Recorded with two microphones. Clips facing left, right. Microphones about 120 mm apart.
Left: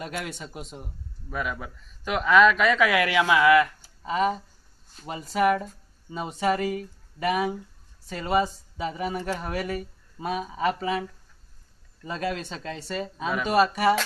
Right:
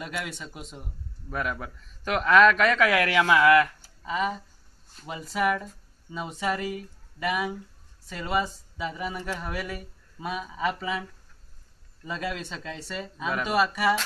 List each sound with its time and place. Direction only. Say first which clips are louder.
0.0 s speech: left 1 dB; 35° left (ahead or behind)
1.3 s a man's voice: even; 5° left (ahead or behind)
4.0 s speech: left 4 dB; 35° left (ahead or behind)
12.1 s speech: left 3 dB; 35° left (ahead or behind)